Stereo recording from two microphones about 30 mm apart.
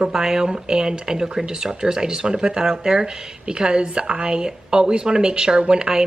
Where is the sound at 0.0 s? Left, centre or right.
Centre.